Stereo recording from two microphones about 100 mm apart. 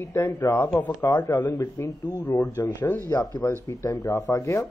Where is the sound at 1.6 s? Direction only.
30° left (ahead or behind).